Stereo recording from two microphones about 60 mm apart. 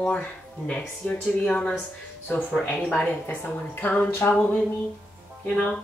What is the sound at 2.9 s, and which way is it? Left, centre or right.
Speech, left.